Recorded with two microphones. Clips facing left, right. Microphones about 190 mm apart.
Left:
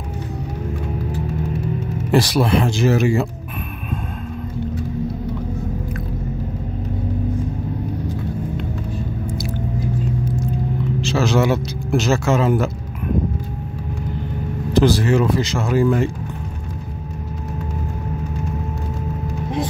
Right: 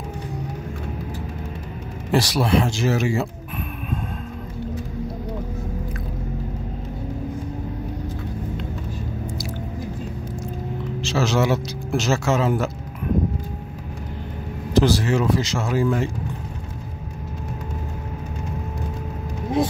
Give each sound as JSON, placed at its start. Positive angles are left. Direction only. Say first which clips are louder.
{"t": 2.1, "sound": "speech", "louder": "left 3 dB", "side_deg": 55}
{"t": 11.0, "sound": "speech", "louder": "left 3 dB", "side_deg": 55}
{"t": 14.7, "sound": "speech", "louder": "left 3 dB", "side_deg": 55}